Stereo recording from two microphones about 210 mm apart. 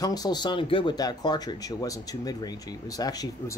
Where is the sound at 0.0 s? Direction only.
20° left (ahead or behind).